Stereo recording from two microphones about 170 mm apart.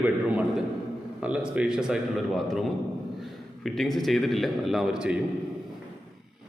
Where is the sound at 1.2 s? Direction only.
5° right (ahead or behind).